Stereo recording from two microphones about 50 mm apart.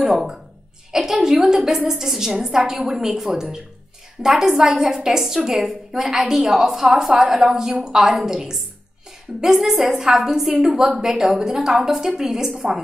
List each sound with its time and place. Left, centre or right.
0.0 s a woman's voice: centre